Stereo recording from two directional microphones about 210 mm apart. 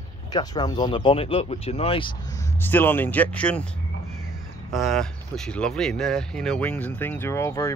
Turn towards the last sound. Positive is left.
turn(degrees=15)  # may be behind; listen again after turning